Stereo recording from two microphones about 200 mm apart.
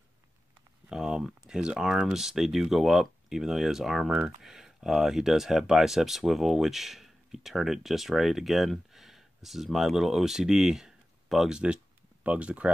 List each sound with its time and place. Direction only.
0.8 s speech: 5° right (ahead or behind)